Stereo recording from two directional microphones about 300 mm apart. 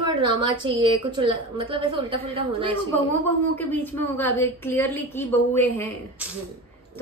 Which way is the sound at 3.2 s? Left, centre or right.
Centre.